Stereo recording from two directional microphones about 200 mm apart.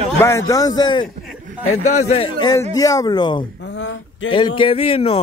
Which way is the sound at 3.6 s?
60° left (ahead or behind).